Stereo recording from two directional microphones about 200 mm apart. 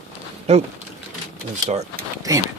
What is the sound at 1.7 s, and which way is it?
Speech, 35° right (ahead or behind).